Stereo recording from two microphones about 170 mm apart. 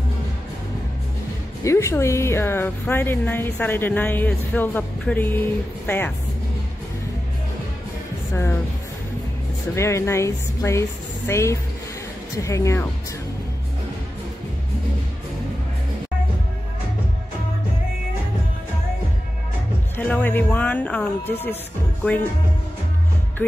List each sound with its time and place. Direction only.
1.6 s a woman's voice: 15° left (ahead or behind)
8.3 s speech: 15° left (ahead or behind)
9.8 s a woman's voice: 15° left (ahead or behind)
20.0 s a woman's voice: 10° left (ahead or behind)